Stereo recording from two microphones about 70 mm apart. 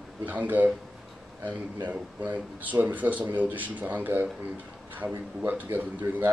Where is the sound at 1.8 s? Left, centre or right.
Right.